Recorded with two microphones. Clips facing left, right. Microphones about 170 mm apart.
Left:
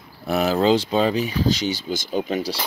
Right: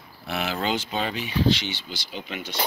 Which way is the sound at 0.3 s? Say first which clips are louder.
Left 9 dB; 40° left (ahead or behind).